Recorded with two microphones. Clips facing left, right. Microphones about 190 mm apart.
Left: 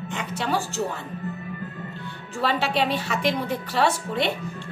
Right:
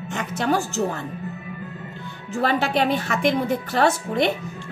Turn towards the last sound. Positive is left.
turn(degrees=-45)  # may be behind; listen again after turning